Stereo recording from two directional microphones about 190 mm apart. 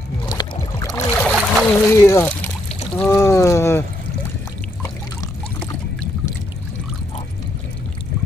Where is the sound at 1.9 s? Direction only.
15° left (ahead or behind).